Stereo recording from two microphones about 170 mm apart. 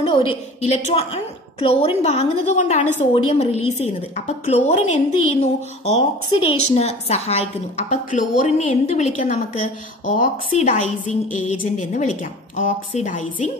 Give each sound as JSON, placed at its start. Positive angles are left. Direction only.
{"t": 0.0, "sound": "a woman's voice", "side_deg": 30}